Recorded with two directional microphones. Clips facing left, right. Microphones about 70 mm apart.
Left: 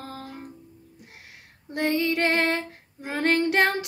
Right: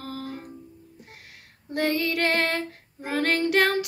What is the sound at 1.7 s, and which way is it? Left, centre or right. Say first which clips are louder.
Female singing: left 1 dB; left.